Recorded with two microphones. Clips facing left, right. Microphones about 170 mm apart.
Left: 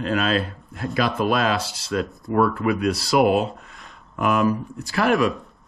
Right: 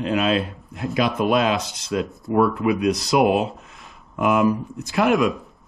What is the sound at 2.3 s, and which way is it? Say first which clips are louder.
Speech: right 1 dB; 15° right (ahead or behind).